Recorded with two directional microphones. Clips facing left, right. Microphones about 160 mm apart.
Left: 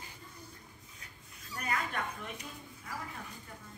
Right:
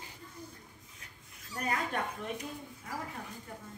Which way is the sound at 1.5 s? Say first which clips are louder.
Right 2 dB; 35° right (ahead or behind).